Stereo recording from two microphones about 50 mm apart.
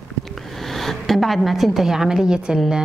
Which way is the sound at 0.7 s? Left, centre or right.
Centre.